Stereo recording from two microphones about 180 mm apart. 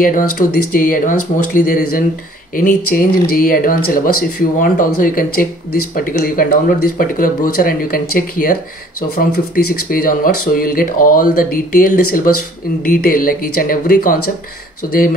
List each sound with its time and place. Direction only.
0.0 s speech: 50° left (ahead or behind)
9.8 s speech: 50° left (ahead or behind)